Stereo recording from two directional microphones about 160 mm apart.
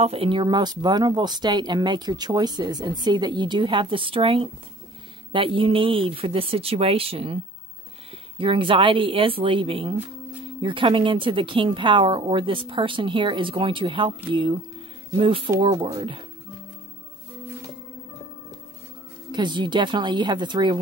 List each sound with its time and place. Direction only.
0.0 s speech: 35° right (ahead or behind)
8.4 s speech: 35° right (ahead or behind)
19.3 s speech: 30° right (ahead or behind)